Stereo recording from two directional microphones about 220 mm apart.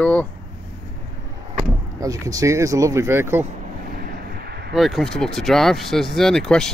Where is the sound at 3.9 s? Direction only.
45° right (ahead or behind).